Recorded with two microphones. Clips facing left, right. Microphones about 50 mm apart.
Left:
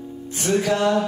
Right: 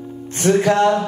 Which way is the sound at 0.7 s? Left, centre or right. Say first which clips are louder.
Right 5 dB; right.